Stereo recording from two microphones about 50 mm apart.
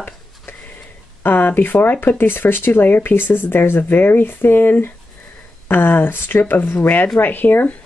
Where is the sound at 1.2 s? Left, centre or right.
Left.